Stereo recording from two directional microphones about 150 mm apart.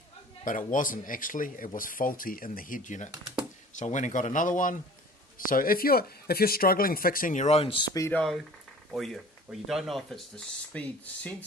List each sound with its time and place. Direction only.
0.5 s speech: 60° left (ahead or behind); by 8.1 s 25° left (ahead or behind)
8.1 s speech: 5° left (ahead or behind)